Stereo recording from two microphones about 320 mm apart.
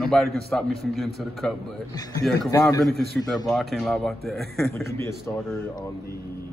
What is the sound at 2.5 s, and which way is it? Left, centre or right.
Speech, centre.